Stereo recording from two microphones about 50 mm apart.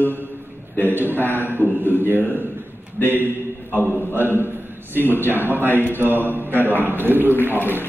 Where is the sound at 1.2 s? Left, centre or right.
Left.